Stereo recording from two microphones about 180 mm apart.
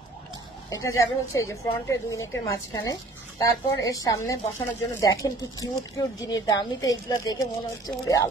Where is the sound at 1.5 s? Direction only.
15° left (ahead or behind).